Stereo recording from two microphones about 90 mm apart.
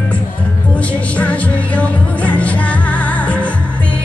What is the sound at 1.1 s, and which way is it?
Music, 15° left (ahead or behind).